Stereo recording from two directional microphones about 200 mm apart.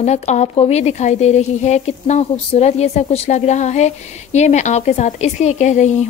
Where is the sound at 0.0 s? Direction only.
35° left (ahead or behind).